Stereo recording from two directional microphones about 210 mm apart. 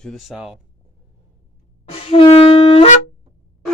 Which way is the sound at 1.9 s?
25° left (ahead or behind).